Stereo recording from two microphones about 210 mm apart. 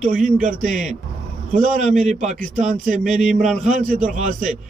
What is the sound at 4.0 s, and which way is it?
Speech, 35° right (ahead or behind).